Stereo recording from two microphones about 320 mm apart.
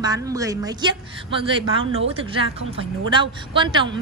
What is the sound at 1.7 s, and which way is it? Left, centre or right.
Speech, right.